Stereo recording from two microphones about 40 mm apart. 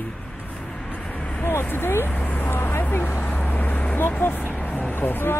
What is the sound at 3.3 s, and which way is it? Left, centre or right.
Vehicle, left.